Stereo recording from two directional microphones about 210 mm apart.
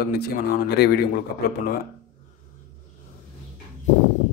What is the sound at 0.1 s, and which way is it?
Speech, 50° left (ahead or behind).